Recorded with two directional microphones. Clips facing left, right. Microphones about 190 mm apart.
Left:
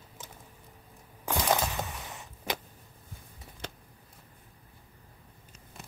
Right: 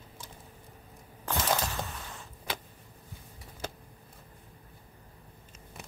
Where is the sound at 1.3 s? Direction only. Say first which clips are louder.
Left 2 dB; 10° left (ahead or behind).